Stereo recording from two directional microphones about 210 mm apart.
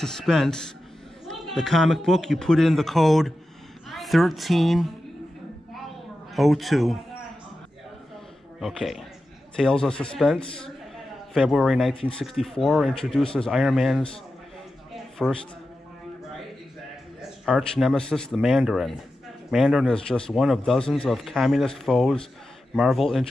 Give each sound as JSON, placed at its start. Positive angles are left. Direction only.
{"t": 0.0, "sound": "a woman's voice", "side_deg": 0}
{"t": 6.3, "sound": "speech", "side_deg": 0}
{"t": 8.5, "sound": "speech", "side_deg": 0}
{"t": 15.2, "sound": "speech", "side_deg": 0}
{"t": 17.2, "sound": "speech", "side_deg": 0}